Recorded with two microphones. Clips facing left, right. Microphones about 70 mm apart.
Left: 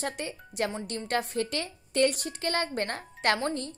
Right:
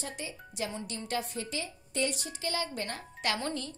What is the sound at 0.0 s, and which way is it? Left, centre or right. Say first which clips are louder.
A woman's voice: left 6 dB; left.